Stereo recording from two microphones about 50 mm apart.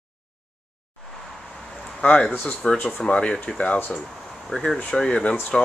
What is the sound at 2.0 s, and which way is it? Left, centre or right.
Speech, left.